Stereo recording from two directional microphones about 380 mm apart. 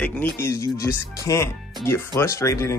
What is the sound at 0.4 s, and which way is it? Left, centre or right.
Speech, centre.